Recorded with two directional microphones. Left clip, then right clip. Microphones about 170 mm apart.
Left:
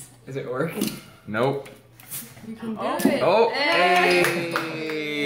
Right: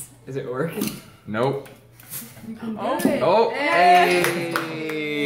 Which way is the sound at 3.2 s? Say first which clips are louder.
Right 1 dB; 5° left (ahead or behind).